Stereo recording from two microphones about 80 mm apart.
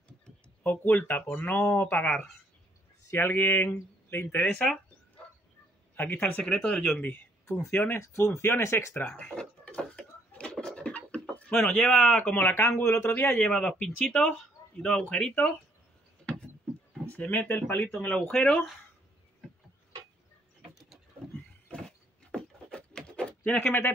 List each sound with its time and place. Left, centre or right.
0.7 s speech: left
2.0 s speech: centre
3.1 s speech: left
6.2 s speech: left
6.5 s speech: centre; by 8.0 s left
8.0 s speech: left
9.0 s a sound: centre
11.8 s speech: centre
12.2 s speech: left
13.1 s speech: centre
17.1 s speech: centre
18.3 s speech: centre
21.6 s a sound: centre
23.6 s speech: left